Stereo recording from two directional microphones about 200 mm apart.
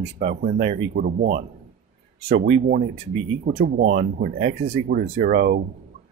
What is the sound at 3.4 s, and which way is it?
Speech, 50° right (ahead or behind).